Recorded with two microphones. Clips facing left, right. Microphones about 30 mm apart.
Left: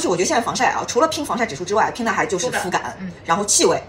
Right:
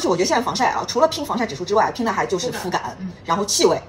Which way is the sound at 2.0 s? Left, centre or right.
Left.